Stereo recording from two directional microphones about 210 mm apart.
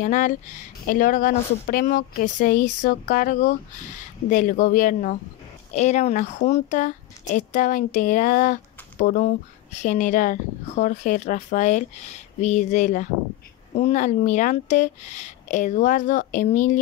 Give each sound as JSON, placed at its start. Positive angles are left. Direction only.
{"t": 0.0, "sound": "speech", "side_deg": 35}